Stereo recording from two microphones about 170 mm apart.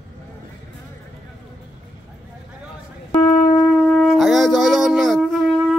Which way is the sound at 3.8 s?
Centre (ahead or behind).